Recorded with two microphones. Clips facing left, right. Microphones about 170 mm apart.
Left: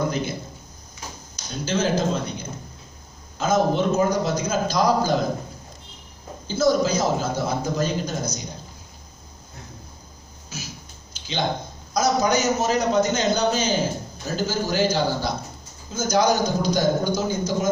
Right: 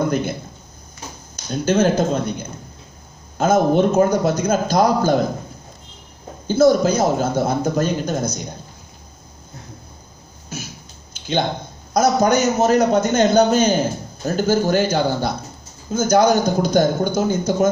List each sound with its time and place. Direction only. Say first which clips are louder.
0.1 s a man's voice: right 5 dB; 55° right (ahead or behind)
6.4 s a man's voice: right 6 dB; 55° right (ahead or behind)
10.5 s a man's voice: right 5 dB; 55° right (ahead or behind)
11.1 s a sound: right 7 dB; 55° right (ahead or behind)
11.9 s a man's voice: right 5 dB; 55° right (ahead or behind)